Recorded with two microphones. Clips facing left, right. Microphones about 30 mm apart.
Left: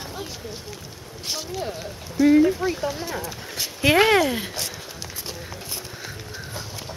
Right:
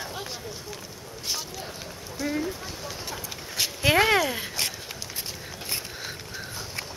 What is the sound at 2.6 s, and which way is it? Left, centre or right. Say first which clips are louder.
Speech: left 13 dB; left.